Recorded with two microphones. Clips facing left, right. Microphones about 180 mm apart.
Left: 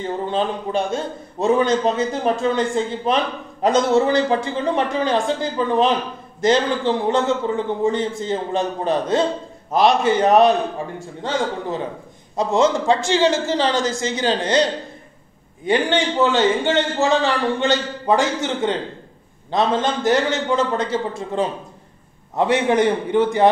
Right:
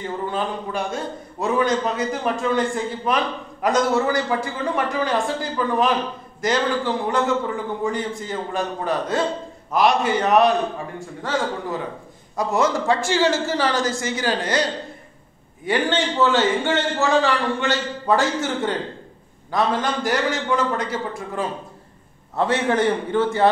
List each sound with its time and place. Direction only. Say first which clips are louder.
0.0 s a man's voice: left 3 dB; 25° left (ahead or behind)